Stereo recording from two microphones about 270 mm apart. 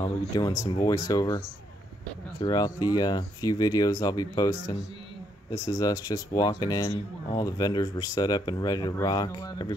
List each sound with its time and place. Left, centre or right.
0.4 s speech: centre
2.4 s speech: centre